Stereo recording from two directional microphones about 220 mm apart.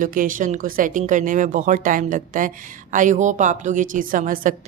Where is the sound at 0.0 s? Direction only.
35° right (ahead or behind).